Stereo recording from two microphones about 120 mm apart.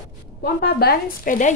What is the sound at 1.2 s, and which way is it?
Speech, 90° left.